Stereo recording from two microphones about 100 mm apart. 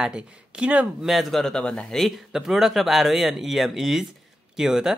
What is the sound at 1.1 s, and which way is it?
Speech, centre (ahead or behind).